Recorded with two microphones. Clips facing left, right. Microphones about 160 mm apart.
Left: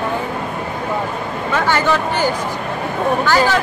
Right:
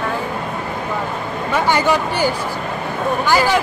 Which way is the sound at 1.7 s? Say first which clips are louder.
Right 1 dB; 15° right (ahead or behind).